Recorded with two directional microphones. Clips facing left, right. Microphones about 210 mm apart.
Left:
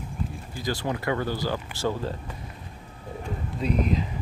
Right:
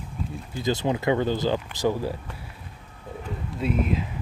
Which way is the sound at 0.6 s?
20° right (ahead or behind).